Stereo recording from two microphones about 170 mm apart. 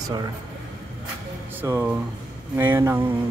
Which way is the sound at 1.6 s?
10° right (ahead or behind).